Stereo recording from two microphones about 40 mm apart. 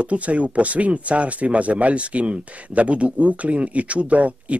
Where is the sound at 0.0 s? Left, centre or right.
Right.